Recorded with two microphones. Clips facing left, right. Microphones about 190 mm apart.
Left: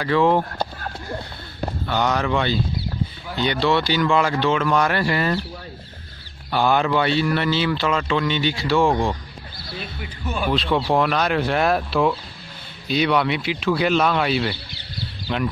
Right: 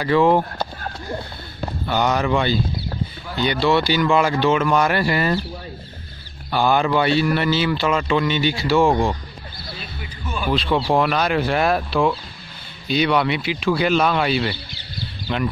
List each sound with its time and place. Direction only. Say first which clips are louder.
0.0 s speech: right 2 dB; 10° right (ahead or behind)
1.9 s speech: right 2 dB; 10° right (ahead or behind)
6.5 s speech: right 1 dB; centre (ahead or behind)
9.8 s music: left 2 dB; 55° left (ahead or behind)
10.5 s speech: right 2 dB; centre (ahead or behind)